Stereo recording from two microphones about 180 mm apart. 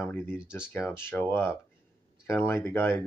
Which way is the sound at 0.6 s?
Centre (ahead or behind).